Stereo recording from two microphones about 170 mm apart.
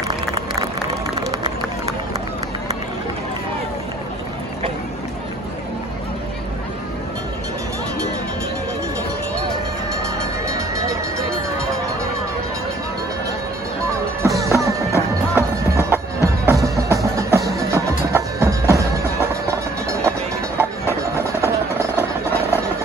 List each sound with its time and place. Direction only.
0.1 s a sound: 20° right (ahead or behind)
10.5 s music: 20° right (ahead or behind)
14.2 s music: 20° right (ahead or behind)
19.9 s music: 15° right (ahead or behind)
21.9 s vehicle: 15° left (ahead or behind)